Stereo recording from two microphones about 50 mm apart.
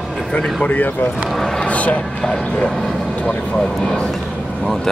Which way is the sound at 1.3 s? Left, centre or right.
Centre.